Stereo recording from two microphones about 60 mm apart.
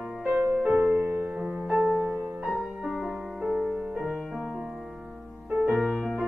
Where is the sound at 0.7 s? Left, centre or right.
Right.